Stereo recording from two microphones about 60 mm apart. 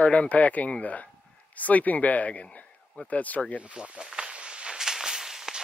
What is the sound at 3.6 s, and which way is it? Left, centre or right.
Speech, right.